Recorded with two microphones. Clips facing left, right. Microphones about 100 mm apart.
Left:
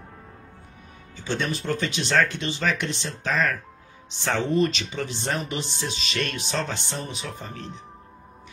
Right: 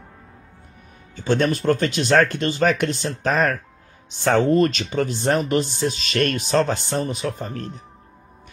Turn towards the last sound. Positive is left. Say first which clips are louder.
# right 6 dB
turn(degrees=-50)  # may be behind; listen again after turning